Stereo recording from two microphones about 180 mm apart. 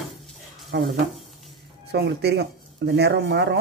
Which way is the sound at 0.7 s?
70° right (ahead or behind).